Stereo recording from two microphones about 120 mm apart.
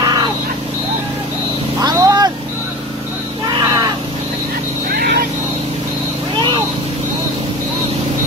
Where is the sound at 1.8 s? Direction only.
30° right (ahead or behind).